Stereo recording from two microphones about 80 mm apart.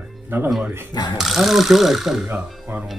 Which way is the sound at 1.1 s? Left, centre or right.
Centre.